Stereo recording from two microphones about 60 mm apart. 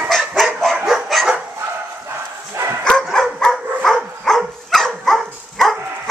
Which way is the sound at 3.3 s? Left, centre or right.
Centre.